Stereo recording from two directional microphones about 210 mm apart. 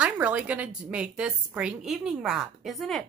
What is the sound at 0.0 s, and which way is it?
A woman's voice, 5° right (ahead or behind).